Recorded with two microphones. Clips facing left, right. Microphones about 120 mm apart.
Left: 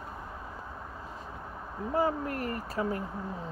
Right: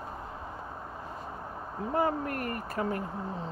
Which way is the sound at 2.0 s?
55° right (ahead or behind).